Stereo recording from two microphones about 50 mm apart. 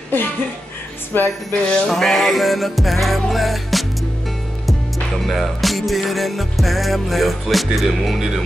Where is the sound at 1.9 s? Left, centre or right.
Centre.